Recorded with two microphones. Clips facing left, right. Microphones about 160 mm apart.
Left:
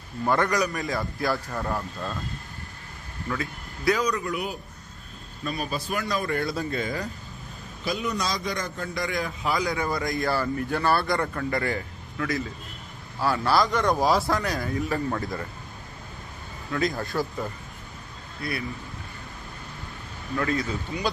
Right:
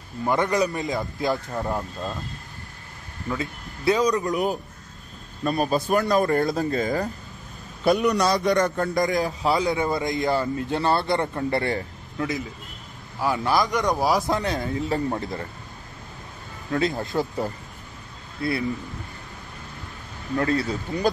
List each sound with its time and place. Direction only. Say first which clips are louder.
0.2 s speech: right 2 dB; 20° right (ahead or behind)
3.3 s a man's voice: right 2 dB; 25° right (ahead or behind); by 7.1 s 40° right (ahead or behind)
7.8 s a man's voice: right 9 dB; 65° right (ahead or behind)
8.8 s speech: right 7 dB; 40° right (ahead or behind)
16.7 s speech: right 3 dB; 25° right (ahead or behind)
20.3 s a man's voice: right 3 dB; 35° right (ahead or behind)